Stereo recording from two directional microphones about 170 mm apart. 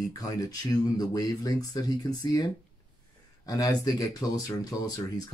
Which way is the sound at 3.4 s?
20° left (ahead or behind).